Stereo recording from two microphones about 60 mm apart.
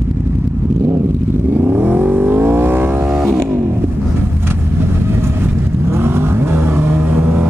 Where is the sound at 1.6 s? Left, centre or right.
Right.